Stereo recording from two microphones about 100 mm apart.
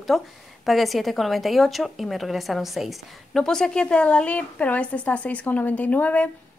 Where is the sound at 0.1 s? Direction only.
Centre (ahead or behind).